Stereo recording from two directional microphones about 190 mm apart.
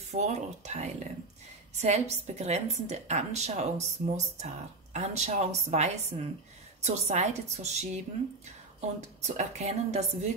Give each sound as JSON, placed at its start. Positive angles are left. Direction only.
{"t": 0.1, "sound": "a woman's voice", "side_deg": -35}
{"t": 9.0, "sound": "a woman's voice", "side_deg": -35}